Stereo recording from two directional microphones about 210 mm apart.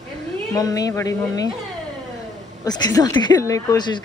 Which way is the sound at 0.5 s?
15° left (ahead or behind).